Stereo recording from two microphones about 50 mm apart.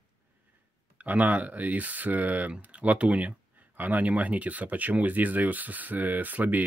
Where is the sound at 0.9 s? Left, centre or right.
Right.